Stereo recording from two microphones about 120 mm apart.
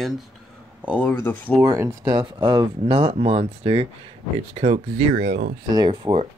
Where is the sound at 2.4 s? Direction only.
40° right (ahead or behind).